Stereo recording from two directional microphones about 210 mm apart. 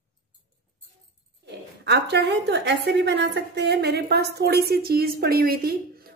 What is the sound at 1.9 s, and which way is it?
A woman's voice, 55° right (ahead or behind).